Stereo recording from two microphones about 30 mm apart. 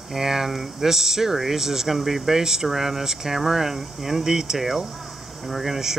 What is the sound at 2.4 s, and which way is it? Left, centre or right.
Speech, centre.